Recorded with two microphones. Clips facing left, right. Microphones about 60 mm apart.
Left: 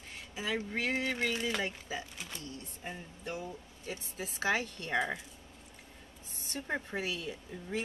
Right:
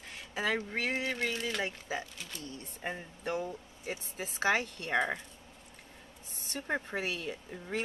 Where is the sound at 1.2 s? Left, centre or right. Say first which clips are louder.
Left 1 dB; centre.